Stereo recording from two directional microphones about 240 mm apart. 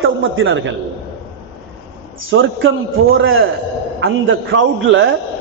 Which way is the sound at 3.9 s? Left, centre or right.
Right.